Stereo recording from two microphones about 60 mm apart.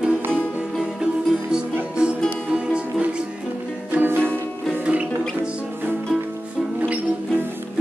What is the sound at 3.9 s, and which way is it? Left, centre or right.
Music, right.